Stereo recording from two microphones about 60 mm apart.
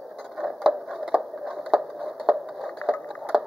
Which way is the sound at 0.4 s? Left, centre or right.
Centre.